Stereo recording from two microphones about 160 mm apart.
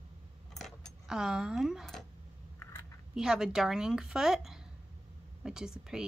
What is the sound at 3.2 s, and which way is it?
Speech, 5° right (ahead or behind).